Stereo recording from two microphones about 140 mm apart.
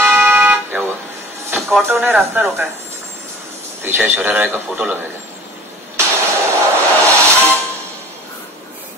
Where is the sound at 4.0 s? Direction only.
10° right (ahead or behind).